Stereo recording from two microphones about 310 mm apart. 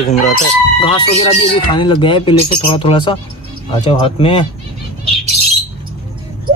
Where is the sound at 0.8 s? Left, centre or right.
Centre.